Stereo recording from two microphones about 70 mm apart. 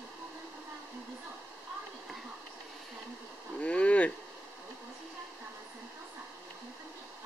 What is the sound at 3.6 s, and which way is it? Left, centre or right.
Vehicle, centre.